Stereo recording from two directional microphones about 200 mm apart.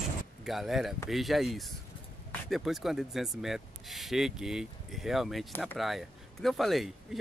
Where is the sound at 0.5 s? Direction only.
Centre (ahead or behind).